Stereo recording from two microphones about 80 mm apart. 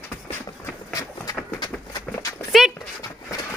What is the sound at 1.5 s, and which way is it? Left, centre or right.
Run, left.